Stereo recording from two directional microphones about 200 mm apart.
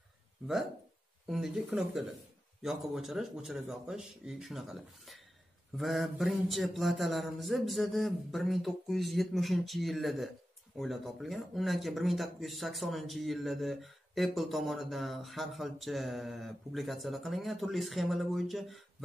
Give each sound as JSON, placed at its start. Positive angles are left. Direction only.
{"t": 1.2, "sound": "speech", "side_deg": 0}